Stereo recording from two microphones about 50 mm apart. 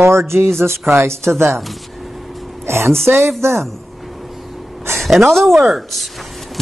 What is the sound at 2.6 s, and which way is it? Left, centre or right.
Speech, right.